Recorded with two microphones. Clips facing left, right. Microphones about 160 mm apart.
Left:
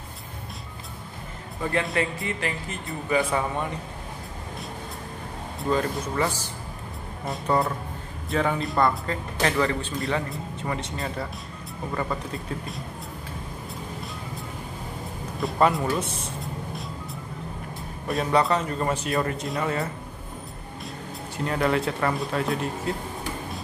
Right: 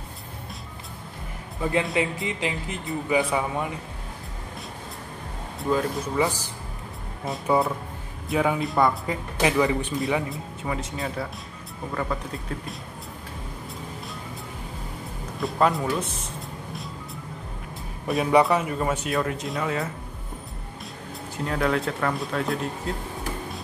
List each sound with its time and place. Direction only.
1.6 s speech: 15° right (ahead or behind)
5.6 s speech: 5° right (ahead or behind)
7.2 s speech: centre (ahead or behind)
10.3 s speech: 5° right (ahead or behind)
15.4 s speech: centre (ahead or behind)
18.0 s speech: centre (ahead or behind)
21.5 s speech: centre (ahead or behind)